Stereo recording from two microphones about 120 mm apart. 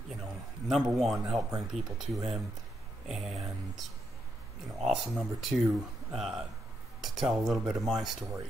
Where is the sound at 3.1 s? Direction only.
Centre (ahead or behind).